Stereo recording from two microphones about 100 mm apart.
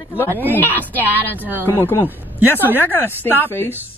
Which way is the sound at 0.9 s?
20° right (ahead or behind).